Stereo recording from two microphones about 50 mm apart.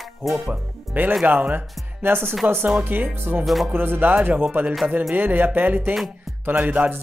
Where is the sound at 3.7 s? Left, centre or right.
Right.